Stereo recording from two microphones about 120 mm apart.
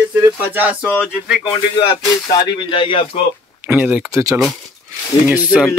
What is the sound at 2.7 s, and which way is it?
Speech, 45° left (ahead or behind).